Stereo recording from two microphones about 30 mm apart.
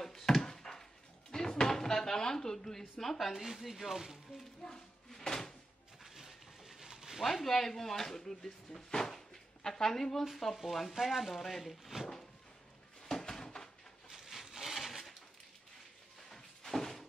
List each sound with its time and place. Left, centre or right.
0.0 s a sound: centre
1.3 s drawer open or close: centre
3.0 s speech: centre
4.6 s cupboard open or close: centre
6.0 s a sound: centre
7.2 s speech: centre
8.2 s speech: centre
8.9 s cupboard open or close: centre
9.6 s speech: centre
11.0 s speech: centre
11.2 s speech: centre
13.2 s a sound: centre
14.0 s wood: centre
16.3 s a sound: centre